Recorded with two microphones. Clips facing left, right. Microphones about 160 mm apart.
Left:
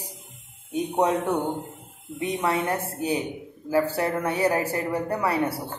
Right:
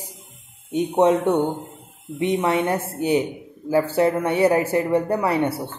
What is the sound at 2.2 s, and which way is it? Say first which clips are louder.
Speech: right 5 dB; 25° right (ahead or behind).